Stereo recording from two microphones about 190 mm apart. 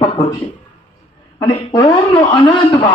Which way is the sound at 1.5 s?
25° left (ahead or behind).